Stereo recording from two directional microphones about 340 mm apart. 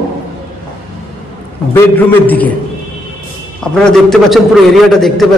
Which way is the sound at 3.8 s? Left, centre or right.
Centre.